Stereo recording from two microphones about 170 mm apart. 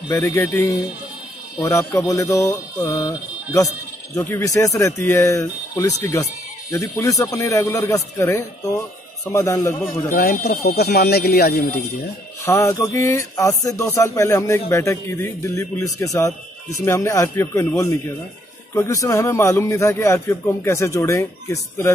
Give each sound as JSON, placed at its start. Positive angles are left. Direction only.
{"t": 0.1, "sound": "a man's voice", "side_deg": 15}
{"t": 10.1, "sound": "speech", "side_deg": 65}
{"t": 12.4, "sound": "a man's voice", "side_deg": 15}